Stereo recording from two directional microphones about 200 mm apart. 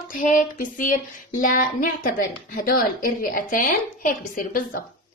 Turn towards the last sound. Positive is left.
turn(degrees=45)  # may be behind; listen again after turning